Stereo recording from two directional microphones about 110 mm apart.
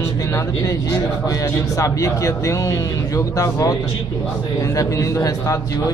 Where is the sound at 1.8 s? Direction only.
30° left (ahead or behind).